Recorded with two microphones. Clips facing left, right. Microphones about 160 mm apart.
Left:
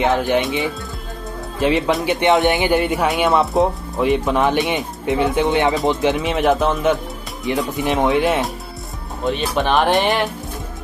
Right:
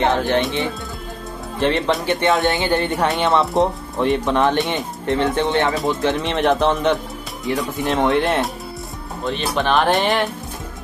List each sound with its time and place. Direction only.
0.4 s speech: centre (ahead or behind)
2.0 s speech: 20° left (ahead or behind)
6.1 s speech: 5° left (ahead or behind)
7.4 s speech: 20° left (ahead or behind)
7.8 s speech: centre (ahead or behind)